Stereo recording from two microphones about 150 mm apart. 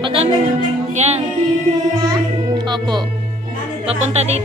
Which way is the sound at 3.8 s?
45° right (ahead or behind).